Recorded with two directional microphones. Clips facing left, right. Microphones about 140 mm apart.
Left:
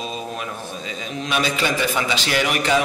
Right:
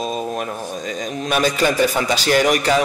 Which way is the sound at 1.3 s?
45° right (ahead or behind).